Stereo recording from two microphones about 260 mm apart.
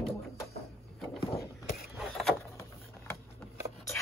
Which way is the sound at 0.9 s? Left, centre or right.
Centre.